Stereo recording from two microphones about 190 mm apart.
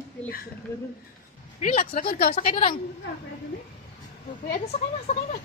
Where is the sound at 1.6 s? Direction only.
45° left (ahead or behind).